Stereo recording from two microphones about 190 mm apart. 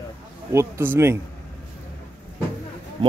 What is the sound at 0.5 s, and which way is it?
Speech, 15° right (ahead or behind).